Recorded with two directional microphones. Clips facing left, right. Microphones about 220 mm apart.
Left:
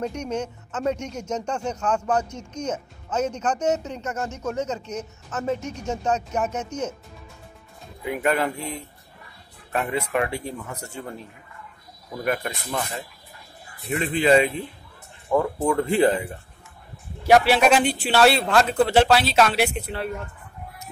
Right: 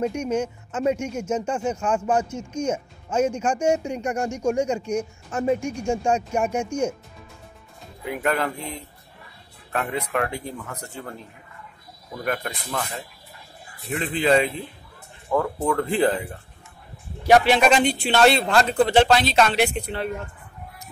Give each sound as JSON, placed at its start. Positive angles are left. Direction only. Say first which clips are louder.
{"t": 0.0, "sound": "speech", "louder": "right 4 dB", "side_deg": -10}
{"t": 8.2, "sound": "speech", "louder": "left 1 dB", "side_deg": 10}
{"t": 9.7, "sound": "speech", "louder": "left 1 dB", "side_deg": 5}
{"t": 12.7, "sound": "speech", "louder": "even", "side_deg": 15}
{"t": 17.3, "sound": "a man's voice", "louder": "even", "side_deg": 5}